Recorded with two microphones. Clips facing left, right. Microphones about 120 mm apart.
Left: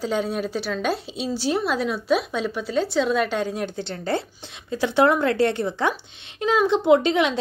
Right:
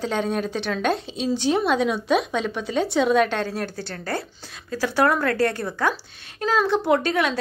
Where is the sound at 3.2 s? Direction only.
10° left (ahead or behind).